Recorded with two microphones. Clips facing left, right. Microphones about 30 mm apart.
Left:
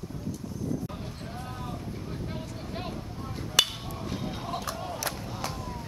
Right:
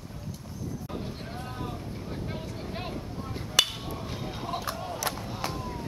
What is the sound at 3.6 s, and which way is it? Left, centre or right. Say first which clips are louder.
Hammer: even; centre.